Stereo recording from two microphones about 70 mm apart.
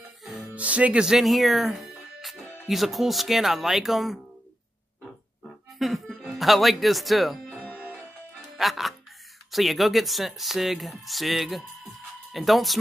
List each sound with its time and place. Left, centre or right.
0.2 s music: centre
0.6 s speech: centre
1.0 s speech: centre
5.8 s speech: centre
8.5 s speech: centre